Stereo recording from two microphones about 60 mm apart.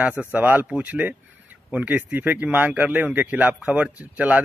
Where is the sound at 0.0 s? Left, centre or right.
Right.